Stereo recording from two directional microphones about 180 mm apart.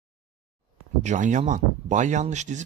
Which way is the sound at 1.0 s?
45° right (ahead or behind).